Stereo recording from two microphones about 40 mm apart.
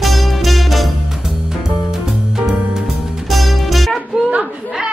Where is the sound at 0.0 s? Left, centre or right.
Centre.